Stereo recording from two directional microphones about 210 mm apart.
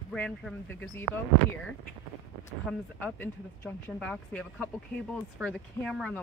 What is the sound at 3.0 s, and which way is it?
Speech, 10° left (ahead or behind).